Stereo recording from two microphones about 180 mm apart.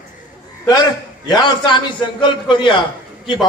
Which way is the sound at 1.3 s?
25° left (ahead or behind).